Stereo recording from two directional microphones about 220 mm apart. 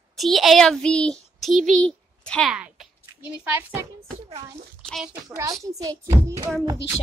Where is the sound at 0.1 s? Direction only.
Centre (ahead or behind).